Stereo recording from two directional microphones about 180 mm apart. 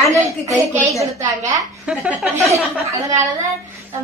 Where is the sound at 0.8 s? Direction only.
15° right (ahead or behind).